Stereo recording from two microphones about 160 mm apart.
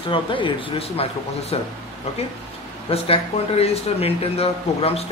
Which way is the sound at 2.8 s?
35° left (ahead or behind).